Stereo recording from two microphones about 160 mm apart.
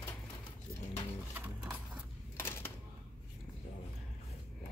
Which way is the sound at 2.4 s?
15° left (ahead or behind).